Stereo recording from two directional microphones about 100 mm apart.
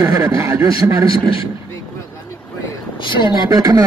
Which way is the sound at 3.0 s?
50° left (ahead or behind).